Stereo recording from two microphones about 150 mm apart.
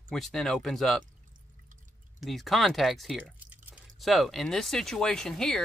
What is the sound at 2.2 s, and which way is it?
Speech, centre (ahead or behind).